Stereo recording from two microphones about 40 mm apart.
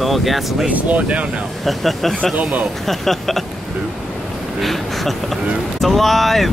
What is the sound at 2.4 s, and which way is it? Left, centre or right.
Speech, right.